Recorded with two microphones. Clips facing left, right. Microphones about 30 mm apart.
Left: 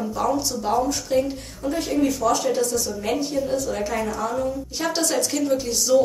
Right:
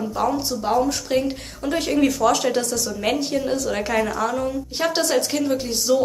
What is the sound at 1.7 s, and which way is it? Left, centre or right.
A woman's voice, right.